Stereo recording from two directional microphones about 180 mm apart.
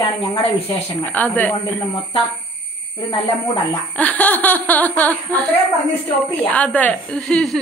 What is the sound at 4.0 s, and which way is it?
Speech, 10° left (ahead or behind).